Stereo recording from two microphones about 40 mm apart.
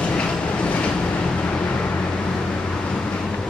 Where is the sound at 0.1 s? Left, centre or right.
Left.